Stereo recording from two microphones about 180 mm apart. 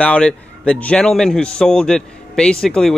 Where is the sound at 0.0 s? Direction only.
5° left (ahead or behind).